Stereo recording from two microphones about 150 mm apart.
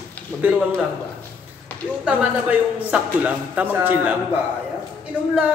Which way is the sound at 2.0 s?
10° right (ahead or behind).